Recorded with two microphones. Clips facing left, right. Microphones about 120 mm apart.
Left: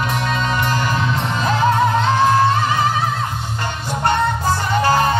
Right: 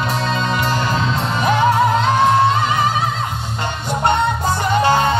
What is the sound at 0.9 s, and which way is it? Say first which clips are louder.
Music: right 1 dB; 20° right (ahead or behind).